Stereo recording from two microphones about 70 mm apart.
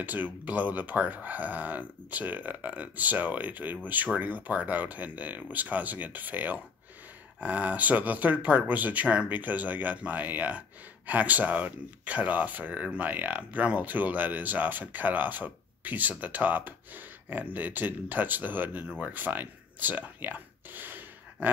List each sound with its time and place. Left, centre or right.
0.0 s speech: right